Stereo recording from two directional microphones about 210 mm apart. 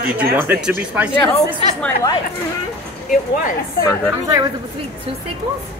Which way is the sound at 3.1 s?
40° left (ahead or behind).